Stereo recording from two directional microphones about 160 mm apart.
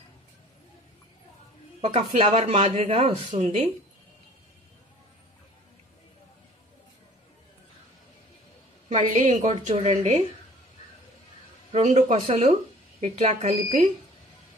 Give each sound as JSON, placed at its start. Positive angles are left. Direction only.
{"t": 1.9, "sound": "a woman's voice", "side_deg": -40}
{"t": 8.8, "sound": "a woman's voice", "side_deg": -45}
{"t": 11.7, "sound": "a woman's voice", "side_deg": -45}